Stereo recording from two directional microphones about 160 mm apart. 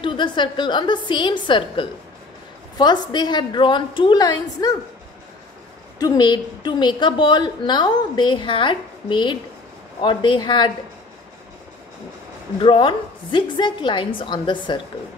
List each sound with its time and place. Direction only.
0.0 s a woman's voice: 30° left (ahead or behind)
5.9 s a woman's voice: 25° left (ahead or behind)
12.6 s a woman's voice: 30° left (ahead or behind)